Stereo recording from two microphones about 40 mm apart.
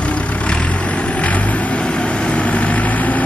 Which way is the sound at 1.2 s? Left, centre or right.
Left.